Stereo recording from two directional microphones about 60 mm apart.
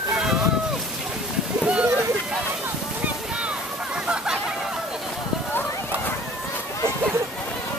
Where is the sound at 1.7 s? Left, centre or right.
Right.